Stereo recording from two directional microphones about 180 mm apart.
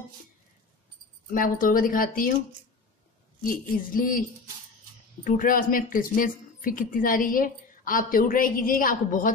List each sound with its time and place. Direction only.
1.3 s speech: 50° left (ahead or behind)
3.4 s speech: 50° left (ahead or behind)